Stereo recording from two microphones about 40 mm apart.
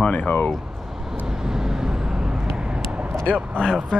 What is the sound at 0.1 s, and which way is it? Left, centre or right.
Speech, left.